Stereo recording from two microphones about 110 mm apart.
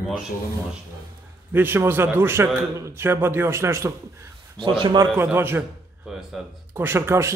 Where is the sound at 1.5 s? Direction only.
20° right (ahead or behind).